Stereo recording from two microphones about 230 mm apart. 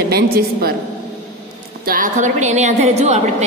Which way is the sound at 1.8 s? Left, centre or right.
Right.